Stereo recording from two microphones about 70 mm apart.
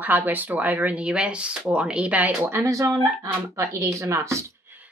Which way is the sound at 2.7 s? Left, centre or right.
Right.